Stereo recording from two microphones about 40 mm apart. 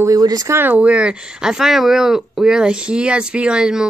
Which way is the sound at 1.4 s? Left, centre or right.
Centre.